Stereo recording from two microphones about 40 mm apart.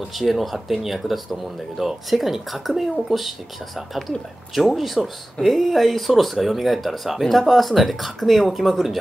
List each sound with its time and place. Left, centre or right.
0.1 s speech: centre